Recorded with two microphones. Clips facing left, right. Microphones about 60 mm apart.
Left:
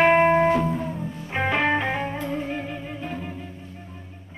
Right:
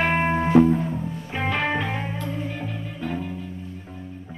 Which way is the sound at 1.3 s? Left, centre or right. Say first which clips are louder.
Left 3 dB; centre.